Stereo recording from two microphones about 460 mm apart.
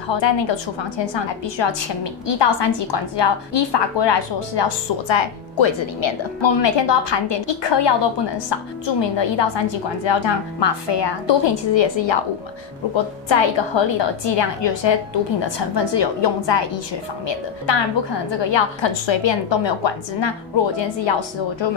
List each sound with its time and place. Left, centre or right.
0.1 s a woman's voice: left